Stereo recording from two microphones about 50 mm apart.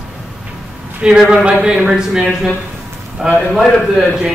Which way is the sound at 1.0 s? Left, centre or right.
Centre.